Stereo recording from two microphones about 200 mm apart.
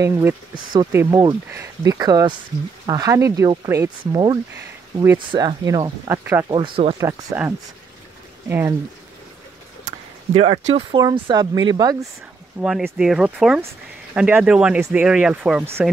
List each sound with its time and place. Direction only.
0.0 s speech: 15° right (ahead or behind)
6.5 s speech: 25° right (ahead or behind)
7.0 s speech: 15° right (ahead or behind)
9.8 s speech: 30° right (ahead or behind)
12.5 s speech: centre (ahead or behind)